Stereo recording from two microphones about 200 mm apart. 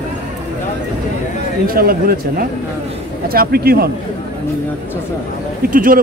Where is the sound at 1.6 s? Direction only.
45° right (ahead or behind).